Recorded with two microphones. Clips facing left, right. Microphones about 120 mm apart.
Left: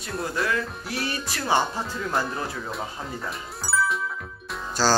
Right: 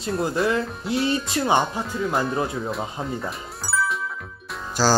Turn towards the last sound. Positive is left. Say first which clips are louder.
# right 2 dB
turn(degrees=-15)  # may be behind; listen again after turning